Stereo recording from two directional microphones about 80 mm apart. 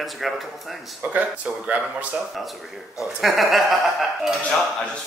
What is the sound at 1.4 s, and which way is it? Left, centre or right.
Speech, centre.